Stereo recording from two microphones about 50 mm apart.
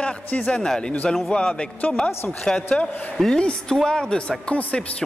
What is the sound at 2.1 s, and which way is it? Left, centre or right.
Speech, left.